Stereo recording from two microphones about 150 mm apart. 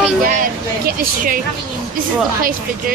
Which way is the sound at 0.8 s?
65° right (ahead or behind).